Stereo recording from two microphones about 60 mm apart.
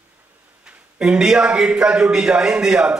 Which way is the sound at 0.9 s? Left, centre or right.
Centre.